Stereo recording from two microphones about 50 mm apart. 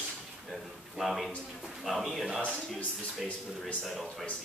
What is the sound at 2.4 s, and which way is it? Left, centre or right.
Speech, left.